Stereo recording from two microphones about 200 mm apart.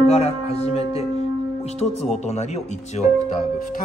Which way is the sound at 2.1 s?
30° left (ahead or behind).